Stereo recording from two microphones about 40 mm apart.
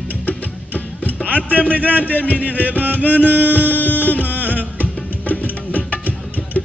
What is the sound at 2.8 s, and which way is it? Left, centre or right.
Music, right.